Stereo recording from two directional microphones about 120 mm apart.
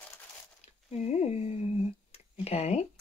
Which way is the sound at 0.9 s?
60° left (ahead or behind).